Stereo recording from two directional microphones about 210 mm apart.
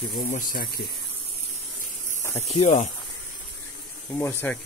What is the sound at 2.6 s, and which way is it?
Speech, 35° left (ahead or behind).